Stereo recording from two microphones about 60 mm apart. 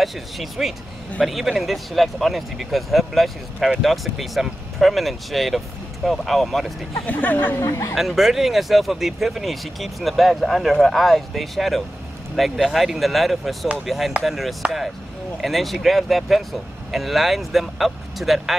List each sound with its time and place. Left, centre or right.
0.0 s speech: centre
7.1 s speech: left
7.6 s speech: left
7.9 s speech: centre